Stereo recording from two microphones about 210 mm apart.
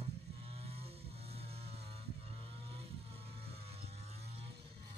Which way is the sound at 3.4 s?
30° right (ahead or behind).